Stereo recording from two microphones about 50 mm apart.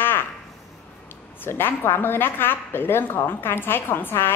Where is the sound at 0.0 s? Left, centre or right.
Left.